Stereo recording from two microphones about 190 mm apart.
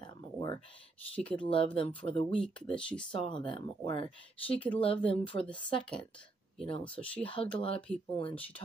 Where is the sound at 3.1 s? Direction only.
25° left (ahead or behind).